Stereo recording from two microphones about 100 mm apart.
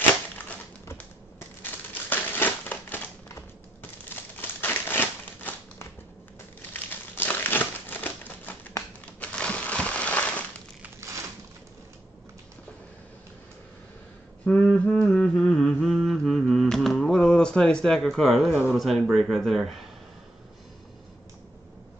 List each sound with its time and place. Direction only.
1.6 s crumpling: 20° left (ahead or behind)
9.2 s crushing: 10° left (ahead or behind)
14.5 s a sound: 20° left (ahead or behind)
14.9 s mantra: 10° left (ahead or behind)
18.7 s speech: centre (ahead or behind)